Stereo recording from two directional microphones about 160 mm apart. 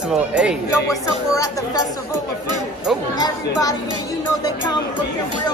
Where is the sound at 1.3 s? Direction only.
20° left (ahead or behind).